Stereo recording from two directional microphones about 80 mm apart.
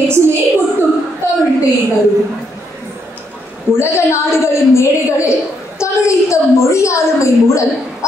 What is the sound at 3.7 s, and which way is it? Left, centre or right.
A woman's voice, left.